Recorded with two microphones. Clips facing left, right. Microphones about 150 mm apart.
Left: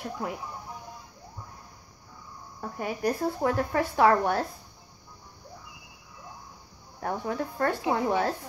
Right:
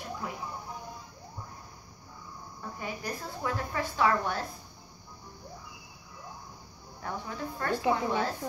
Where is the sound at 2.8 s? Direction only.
60° left (ahead or behind).